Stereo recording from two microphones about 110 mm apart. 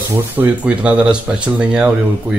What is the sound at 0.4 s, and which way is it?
Speech, 15° right (ahead or behind).